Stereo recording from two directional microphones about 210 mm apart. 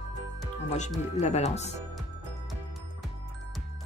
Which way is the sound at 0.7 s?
35° left (ahead or behind).